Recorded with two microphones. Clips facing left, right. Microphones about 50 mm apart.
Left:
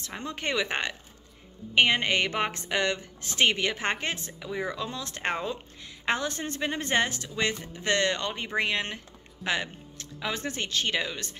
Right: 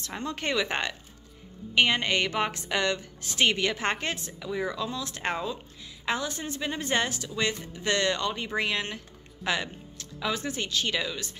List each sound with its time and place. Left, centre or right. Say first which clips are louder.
0.2 s a woman's voice: right 1 dB; centre